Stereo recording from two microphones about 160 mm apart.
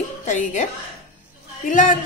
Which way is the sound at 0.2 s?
50° left (ahead or behind).